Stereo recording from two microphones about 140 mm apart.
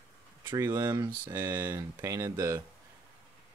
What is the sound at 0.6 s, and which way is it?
Speech, 20° right (ahead or behind).